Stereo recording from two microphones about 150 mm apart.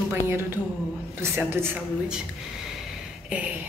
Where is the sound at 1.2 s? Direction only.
15° right (ahead or behind).